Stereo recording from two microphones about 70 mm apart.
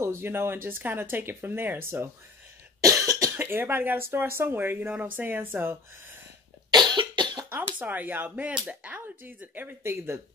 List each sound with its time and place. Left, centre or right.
0.0 s speech: right
2.8 s cough: right
3.3 s speech: right
6.7 s cough: right
7.5 s speech: right